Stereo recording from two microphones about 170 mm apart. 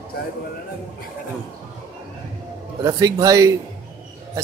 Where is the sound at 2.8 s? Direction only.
20° right (ahead or behind).